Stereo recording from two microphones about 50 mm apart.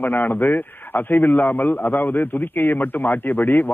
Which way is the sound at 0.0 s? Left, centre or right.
Left.